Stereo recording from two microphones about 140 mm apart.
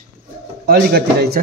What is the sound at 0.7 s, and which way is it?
Speech, 90° right.